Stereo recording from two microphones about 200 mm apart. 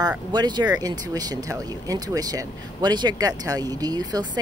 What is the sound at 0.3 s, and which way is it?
Speech, 20° right (ahead or behind).